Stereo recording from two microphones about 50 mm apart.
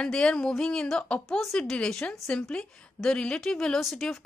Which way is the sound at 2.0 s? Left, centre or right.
Centre.